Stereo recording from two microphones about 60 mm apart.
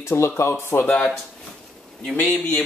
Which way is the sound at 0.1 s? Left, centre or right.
Left.